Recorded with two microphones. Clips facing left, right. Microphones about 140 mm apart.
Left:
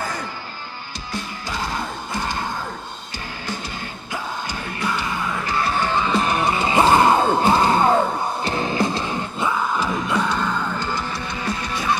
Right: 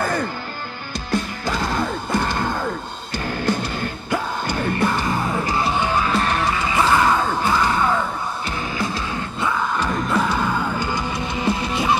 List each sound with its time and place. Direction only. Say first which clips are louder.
0.0 s music: right 6 dB; 55° right (ahead or behind)
3.4 s music: right 7 dB; 55° right (ahead or behind); by 5.7 s 30° right (ahead or behind)
5.7 s music: left 2 dB; 10° right (ahead or behind)
6.3 s music: left 2 dB; 20° left (ahead or behind)
7.7 s music: left 4 dB; 40° left (ahead or behind)
9.4 s music: even; 5° left (ahead or behind); by 12.0 s 25° right (ahead or behind)